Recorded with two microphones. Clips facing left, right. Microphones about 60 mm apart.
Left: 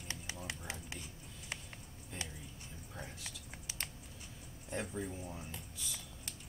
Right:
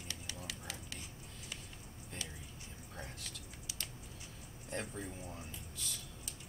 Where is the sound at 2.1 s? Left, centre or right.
Centre.